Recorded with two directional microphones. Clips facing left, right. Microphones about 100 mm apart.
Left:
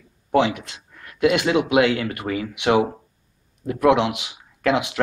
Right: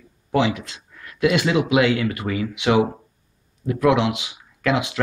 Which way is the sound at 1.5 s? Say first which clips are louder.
Even; 50° left (ahead or behind).